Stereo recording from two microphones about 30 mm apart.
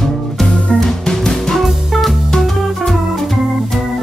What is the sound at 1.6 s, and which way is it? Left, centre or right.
Music, centre.